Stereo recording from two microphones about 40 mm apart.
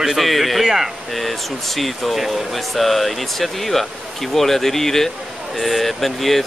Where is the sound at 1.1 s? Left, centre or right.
Centre.